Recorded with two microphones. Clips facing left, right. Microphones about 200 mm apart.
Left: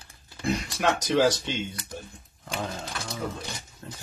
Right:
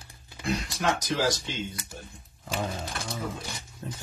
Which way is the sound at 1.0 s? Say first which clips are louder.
Left 5 dB; 75° left (ahead or behind).